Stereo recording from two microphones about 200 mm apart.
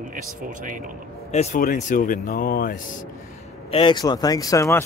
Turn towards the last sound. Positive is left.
turn(degrees=15)  # may be behind; listen again after turning